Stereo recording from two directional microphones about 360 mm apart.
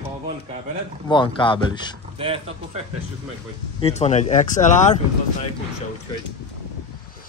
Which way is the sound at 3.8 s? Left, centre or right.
Centre.